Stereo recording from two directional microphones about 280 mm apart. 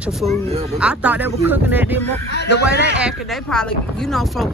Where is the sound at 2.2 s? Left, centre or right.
Left.